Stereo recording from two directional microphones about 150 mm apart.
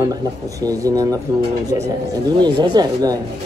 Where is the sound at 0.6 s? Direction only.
25° right (ahead or behind).